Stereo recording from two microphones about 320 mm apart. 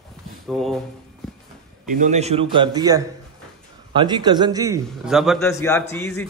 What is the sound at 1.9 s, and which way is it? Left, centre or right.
A man's voice, right.